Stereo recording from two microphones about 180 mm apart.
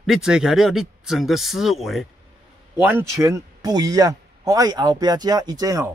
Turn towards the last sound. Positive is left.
turn(degrees=-20)  # may be behind; listen again after turning